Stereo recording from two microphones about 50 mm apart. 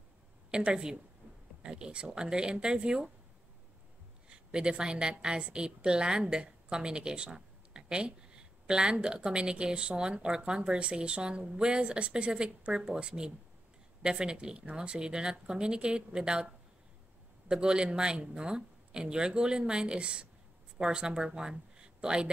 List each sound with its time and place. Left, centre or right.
0.5 s speech: centre
4.3 s a woman's voice: centre
17.5 s speech: centre